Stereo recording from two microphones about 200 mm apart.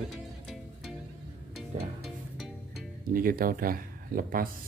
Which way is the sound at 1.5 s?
Centre (ahead or behind).